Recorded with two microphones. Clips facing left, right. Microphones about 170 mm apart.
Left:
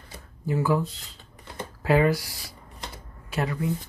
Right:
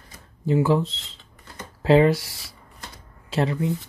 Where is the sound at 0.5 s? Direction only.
25° right (ahead or behind).